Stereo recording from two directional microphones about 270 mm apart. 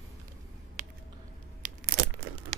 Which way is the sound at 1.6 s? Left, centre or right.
Right.